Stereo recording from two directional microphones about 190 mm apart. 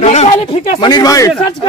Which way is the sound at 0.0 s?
35° left (ahead or behind).